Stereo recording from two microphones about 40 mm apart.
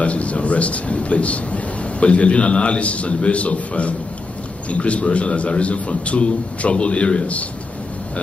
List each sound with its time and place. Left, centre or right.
0.0 s a man's voice: left